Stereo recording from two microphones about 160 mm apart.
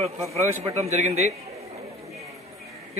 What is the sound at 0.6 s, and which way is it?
Speech, 40° right (ahead or behind).